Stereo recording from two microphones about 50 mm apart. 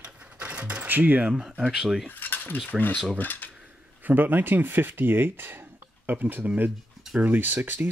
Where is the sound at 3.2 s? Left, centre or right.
Left.